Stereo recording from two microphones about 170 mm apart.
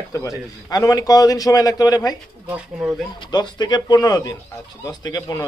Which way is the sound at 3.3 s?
25° left (ahead or behind).